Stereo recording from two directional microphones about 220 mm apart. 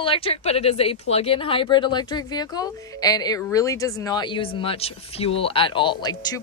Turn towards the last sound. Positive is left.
turn(degrees=20)  # may be behind; listen again after turning